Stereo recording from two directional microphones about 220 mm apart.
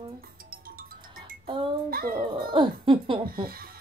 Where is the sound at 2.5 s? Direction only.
20° right (ahead or behind).